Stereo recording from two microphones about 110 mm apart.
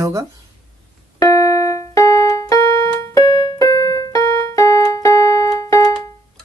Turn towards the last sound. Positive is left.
turn(degrees=30)  # may be behind; listen again after turning